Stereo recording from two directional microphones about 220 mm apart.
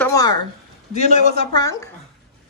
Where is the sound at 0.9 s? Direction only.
30° left (ahead or behind).